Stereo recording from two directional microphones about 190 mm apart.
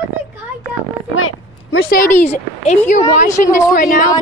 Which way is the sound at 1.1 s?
90° left.